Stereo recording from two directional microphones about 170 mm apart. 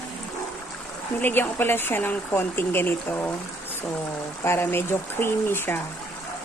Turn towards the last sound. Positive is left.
turn(degrees=10)  # may be behind; listen again after turning